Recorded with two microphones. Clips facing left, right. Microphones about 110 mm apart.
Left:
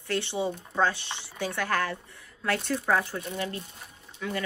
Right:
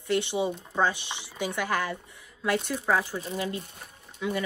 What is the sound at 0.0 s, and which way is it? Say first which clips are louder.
Speech: right 2 dB; 20° right (ahead or behind).